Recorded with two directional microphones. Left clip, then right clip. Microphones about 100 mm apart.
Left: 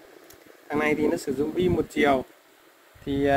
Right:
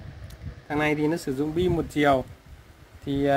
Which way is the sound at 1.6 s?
30° right (ahead or behind).